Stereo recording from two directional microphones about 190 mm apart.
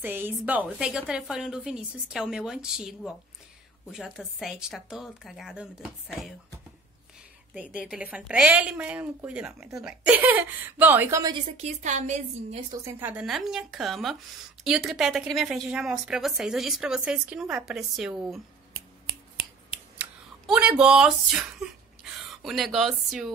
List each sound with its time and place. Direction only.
0.0 s a woman's voice: 10° right (ahead or behind)
7.8 s a woman's voice: 5° right (ahead or behind)
11.5 s a woman's voice: 35° right (ahead or behind)
12.8 s a woman's voice: 10° right (ahead or behind)
20.0 s a woman's voice: 5° right (ahead or behind)